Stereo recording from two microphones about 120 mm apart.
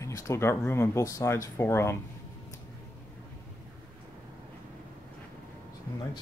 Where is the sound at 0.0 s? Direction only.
25° left (ahead or behind).